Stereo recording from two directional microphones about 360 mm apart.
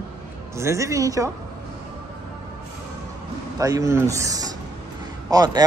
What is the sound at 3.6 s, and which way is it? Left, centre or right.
Speech, centre.